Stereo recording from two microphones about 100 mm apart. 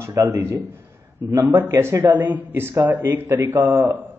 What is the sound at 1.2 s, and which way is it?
A man's voice, 30° right (ahead or behind).